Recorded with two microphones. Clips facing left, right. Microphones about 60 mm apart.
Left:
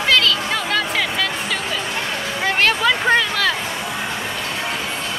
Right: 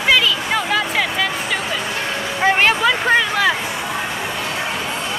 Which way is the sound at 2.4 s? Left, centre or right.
Centre.